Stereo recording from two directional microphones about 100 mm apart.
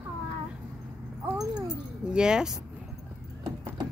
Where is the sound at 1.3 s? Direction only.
40° right (ahead or behind).